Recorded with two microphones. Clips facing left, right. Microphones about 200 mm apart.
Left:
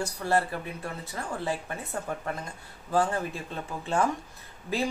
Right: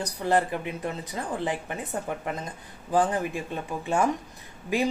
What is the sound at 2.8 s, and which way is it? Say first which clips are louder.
A woman's voice: right 2 dB; 15° right (ahead or behind).